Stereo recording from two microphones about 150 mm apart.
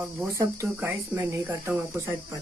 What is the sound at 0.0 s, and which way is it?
Speech, 15° right (ahead or behind).